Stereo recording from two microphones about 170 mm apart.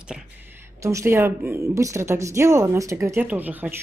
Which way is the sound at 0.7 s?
15° right (ahead or behind).